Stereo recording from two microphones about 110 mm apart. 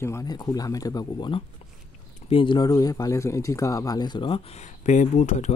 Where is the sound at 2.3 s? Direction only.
50° left (ahead or behind).